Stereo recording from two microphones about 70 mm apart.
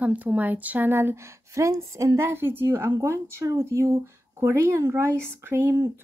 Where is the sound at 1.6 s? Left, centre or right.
Right.